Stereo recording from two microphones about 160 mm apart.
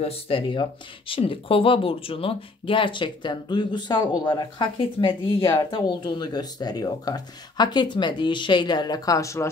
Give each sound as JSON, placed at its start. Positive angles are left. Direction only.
{"t": 0.0, "sound": "speech", "side_deg": 35}